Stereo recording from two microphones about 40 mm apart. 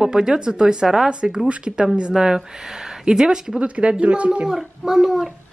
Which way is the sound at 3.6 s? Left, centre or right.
Right.